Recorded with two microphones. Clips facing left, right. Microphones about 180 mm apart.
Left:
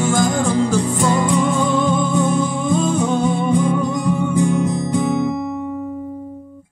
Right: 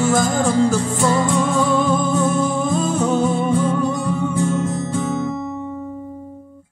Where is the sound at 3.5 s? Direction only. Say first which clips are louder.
Left 1 dB; 15° left (ahead or behind).